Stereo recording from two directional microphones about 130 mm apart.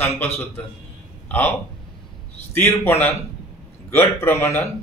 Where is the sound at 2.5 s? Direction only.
15° left (ahead or behind).